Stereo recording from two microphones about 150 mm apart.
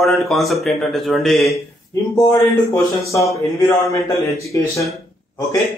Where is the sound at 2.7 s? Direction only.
20° left (ahead or behind).